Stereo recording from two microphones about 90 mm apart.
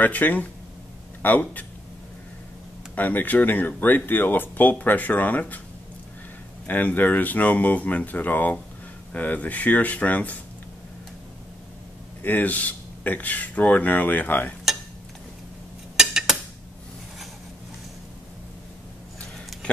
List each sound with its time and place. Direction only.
0.0 s speech: 20° left (ahead or behind)
3.0 s speech: 20° left (ahead or behind)
6.7 s speech: 20° left (ahead or behind)
12.2 s speech: 20° left (ahead or behind)
16.0 s a sound: 5° right (ahead or behind)